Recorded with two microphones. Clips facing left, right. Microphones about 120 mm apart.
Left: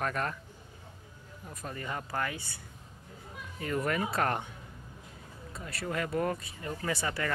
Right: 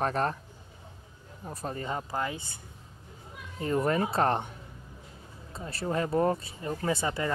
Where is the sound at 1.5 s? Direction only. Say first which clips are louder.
Right 5 dB; 30° right (ahead or behind).